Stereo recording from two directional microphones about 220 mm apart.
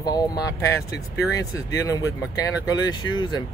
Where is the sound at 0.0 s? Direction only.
15° left (ahead or behind).